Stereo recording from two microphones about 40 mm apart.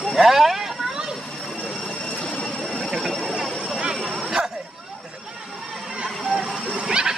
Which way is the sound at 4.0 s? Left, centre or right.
Centre.